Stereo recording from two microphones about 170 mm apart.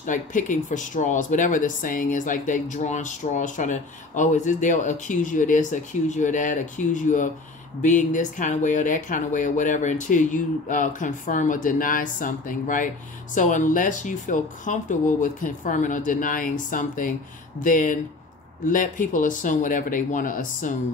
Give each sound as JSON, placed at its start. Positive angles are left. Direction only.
{"t": 0.0, "sound": "speech", "side_deg": 50}